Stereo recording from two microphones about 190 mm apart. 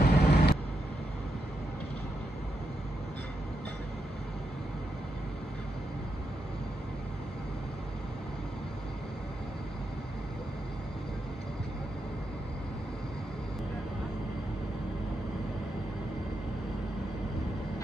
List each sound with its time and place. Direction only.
0.0 s vehicle: 55° left (ahead or behind)